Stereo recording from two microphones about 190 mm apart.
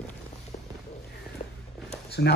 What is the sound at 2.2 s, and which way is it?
Speech, 60° left (ahead or behind).